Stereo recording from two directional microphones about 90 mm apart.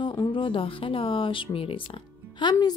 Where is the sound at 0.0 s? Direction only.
65° left (ahead or behind); by 1.8 s 90° left.